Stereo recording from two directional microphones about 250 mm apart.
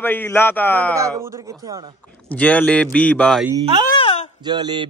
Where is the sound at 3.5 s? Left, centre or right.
Centre.